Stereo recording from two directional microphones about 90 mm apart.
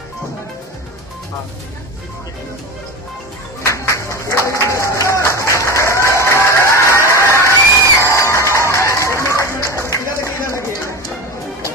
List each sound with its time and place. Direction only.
3.6 s music: 35° left (ahead or behind)